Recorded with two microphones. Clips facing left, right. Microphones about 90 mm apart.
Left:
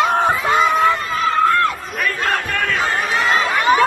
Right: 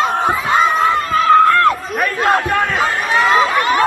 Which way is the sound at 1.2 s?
60° right (ahead or behind).